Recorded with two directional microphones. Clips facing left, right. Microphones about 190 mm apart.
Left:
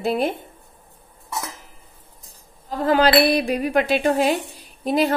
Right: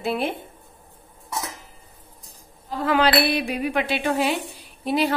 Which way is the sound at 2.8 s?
40° left (ahead or behind).